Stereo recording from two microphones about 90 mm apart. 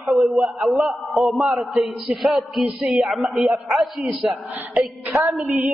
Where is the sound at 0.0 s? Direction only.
Centre (ahead or behind).